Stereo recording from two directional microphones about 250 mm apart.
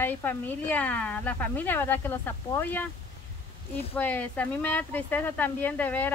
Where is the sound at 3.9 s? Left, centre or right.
Centre.